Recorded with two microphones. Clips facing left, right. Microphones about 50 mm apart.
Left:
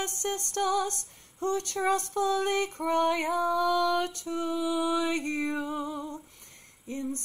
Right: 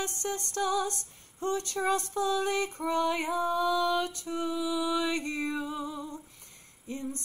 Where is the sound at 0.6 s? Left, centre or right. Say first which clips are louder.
Left 2 dB; left.